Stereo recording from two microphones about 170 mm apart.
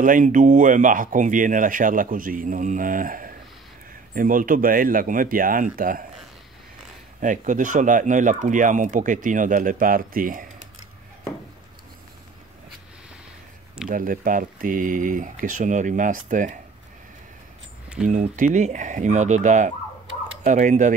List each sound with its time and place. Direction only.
0.0 s speech: 50° right (ahead or behind)
7.2 s speech: 50° right (ahead or behind)
13.8 s speech: 55° right (ahead or behind)
18.0 s speech: 45° right (ahead or behind)